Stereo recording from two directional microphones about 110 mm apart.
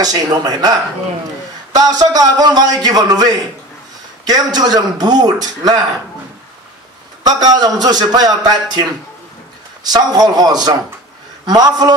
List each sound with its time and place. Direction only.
0.0 s a man's voice: 35° right (ahead or behind)
7.2 s a man's voice: 35° right (ahead or behind)
9.8 s a man's voice: 35° right (ahead or behind)